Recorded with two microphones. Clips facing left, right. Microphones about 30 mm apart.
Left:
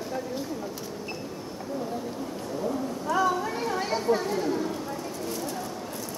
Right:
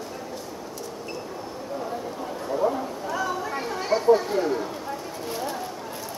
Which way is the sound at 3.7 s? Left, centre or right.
Centre.